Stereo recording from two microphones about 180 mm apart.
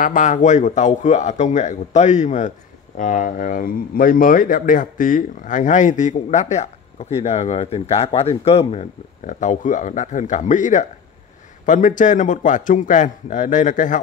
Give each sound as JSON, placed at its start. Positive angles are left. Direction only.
{"t": 0.0, "sound": "a man's voice", "side_deg": 45}